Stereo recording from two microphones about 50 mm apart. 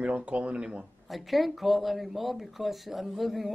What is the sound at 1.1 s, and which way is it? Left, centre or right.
Speech, centre.